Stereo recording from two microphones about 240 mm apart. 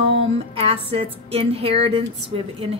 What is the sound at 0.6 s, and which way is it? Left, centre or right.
Speech, right.